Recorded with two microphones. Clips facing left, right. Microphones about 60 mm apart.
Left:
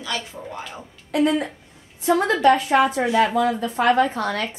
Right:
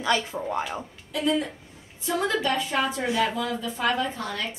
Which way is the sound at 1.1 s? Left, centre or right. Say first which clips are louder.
Left 5 dB; left.